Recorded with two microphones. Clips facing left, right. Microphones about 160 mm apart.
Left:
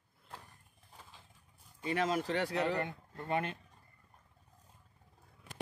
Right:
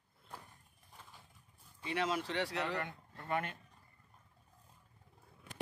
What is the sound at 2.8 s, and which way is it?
Speech, 25° left (ahead or behind).